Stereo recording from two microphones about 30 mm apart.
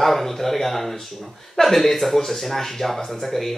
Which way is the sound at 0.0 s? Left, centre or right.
Centre.